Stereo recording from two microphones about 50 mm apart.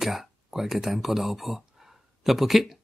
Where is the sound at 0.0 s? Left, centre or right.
Centre.